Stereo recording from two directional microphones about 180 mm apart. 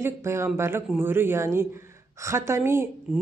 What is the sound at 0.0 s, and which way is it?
A man's voice, 15° right (ahead or behind).